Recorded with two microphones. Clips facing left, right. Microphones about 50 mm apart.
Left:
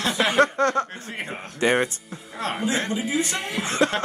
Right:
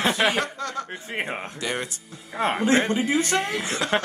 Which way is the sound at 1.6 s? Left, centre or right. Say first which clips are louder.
Left 10 dB; left.